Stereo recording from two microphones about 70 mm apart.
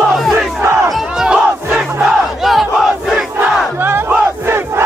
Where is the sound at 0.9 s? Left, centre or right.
Centre.